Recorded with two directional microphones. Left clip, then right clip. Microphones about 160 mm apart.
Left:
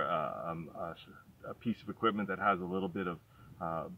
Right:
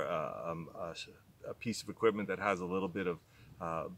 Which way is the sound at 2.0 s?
40° right (ahead or behind).